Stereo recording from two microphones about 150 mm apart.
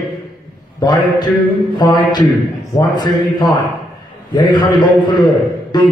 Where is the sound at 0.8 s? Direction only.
25° left (ahead or behind).